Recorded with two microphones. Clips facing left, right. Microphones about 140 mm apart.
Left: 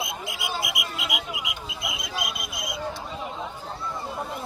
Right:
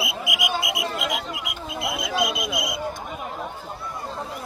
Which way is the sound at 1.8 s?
65° right (ahead or behind).